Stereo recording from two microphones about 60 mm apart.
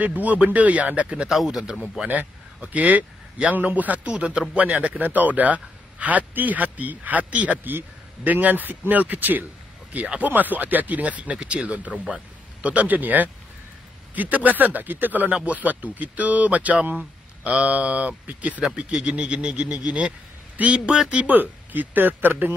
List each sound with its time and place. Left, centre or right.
0.0 s speech: right
1.3 s speech: centre
1.6 s speech: centre
2.0 s a man's voice: right
18.8 s speech: centre
21.4 s speech: right